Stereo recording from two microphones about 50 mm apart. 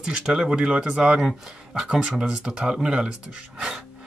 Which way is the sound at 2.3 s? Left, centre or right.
Centre.